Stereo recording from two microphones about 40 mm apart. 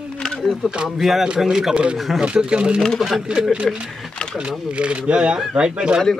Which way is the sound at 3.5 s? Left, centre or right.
Right.